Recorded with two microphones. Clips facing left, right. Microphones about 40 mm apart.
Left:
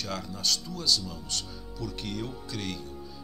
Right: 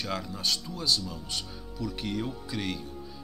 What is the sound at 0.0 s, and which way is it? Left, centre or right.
Speech, centre.